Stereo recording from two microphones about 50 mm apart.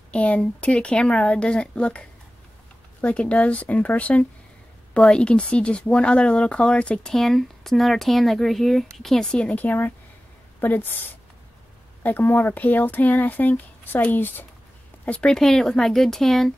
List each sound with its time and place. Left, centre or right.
0.1 s speech: left
9.6 s speech: left
15.0 s speech: centre
15.3 s speech: centre